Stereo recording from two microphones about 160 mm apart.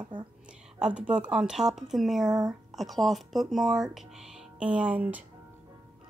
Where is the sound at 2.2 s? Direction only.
25° right (ahead or behind).